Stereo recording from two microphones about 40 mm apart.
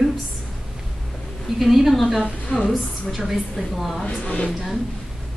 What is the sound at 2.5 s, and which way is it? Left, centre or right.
Speech, left.